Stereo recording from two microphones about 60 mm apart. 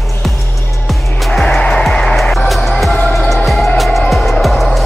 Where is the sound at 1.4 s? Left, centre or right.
Centre.